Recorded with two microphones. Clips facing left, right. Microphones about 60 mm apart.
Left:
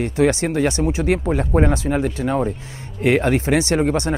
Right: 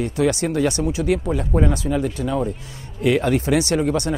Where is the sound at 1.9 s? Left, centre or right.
Left.